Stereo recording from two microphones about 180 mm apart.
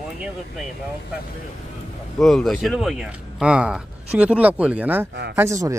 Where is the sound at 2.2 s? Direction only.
Centre (ahead or behind); by 5.8 s 15° right (ahead or behind).